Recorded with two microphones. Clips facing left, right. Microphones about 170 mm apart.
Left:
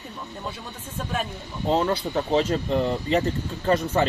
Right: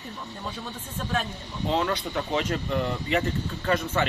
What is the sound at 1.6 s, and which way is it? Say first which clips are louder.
Speech: left 4 dB; 35° left (ahead or behind).